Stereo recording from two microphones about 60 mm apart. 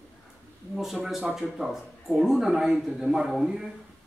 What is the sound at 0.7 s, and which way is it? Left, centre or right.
Speech, centre.